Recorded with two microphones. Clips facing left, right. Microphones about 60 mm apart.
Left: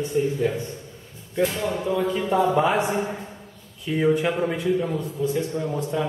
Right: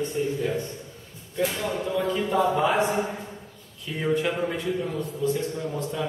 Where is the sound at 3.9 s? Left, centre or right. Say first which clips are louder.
Left 4 dB; centre.